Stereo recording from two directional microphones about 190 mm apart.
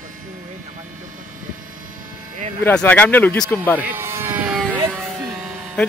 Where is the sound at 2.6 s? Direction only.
5° left (ahead or behind).